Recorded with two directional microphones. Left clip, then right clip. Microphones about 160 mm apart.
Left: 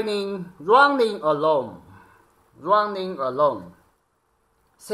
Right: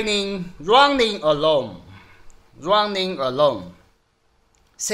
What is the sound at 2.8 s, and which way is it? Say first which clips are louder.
Speech: right 2 dB; 40° right (ahead or behind).